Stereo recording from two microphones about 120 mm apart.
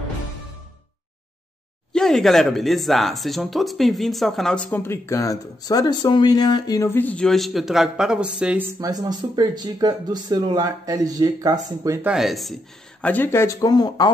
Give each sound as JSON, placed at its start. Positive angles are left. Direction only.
{"t": 1.9, "sound": "speech", "side_deg": 5}
{"t": 6.9, "sound": "speech", "side_deg": 15}
{"t": 8.7, "sound": "speech", "side_deg": -35}
{"t": 12.0, "sound": "speech", "side_deg": -5}
{"t": 13.0, "sound": "speech", "side_deg": 15}